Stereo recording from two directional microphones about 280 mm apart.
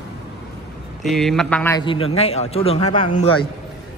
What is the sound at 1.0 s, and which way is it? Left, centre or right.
A man's voice, centre.